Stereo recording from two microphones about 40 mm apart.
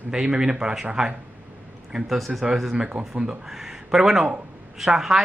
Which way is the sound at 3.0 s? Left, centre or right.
Centre.